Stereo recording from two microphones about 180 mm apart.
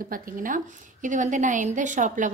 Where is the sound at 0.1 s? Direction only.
50° right (ahead or behind).